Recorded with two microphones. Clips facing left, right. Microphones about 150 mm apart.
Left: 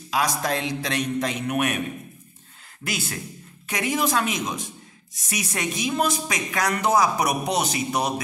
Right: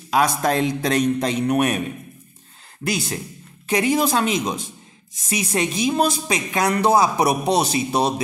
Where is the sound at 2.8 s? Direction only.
35° right (ahead or behind).